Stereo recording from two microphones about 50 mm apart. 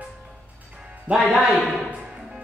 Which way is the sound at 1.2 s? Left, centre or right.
Right.